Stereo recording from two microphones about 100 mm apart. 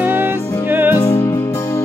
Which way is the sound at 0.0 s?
20° right (ahead or behind).